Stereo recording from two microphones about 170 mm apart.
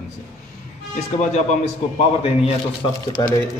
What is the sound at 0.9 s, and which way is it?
Speech, 40° left (ahead or behind).